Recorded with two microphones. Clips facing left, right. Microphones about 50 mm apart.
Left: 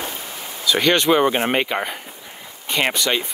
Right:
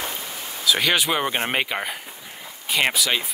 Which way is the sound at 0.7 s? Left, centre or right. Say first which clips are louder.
Left 4 dB; centre.